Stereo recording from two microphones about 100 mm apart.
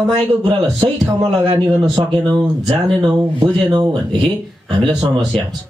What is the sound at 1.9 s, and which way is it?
Speech, 50° right (ahead or behind).